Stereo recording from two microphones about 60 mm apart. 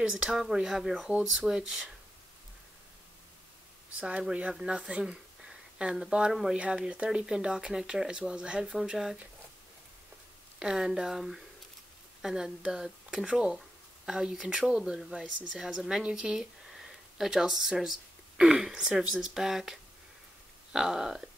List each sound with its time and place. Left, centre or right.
0.0 s speech: centre
4.0 s speech: centre
10.6 s speech: centre